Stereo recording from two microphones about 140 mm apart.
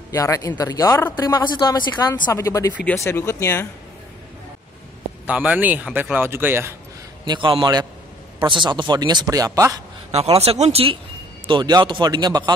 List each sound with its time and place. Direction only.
0.1 s a woman's voice: 20° left (ahead or behind)
2.3 s speech: 20° left (ahead or behind)
5.2 s a man's voice: 10° right (ahead or behind)
7.2 s speech: 35° right (ahead or behind)
10.1 s speech: 45° right (ahead or behind)
11.4 s speech: 35° right (ahead or behind)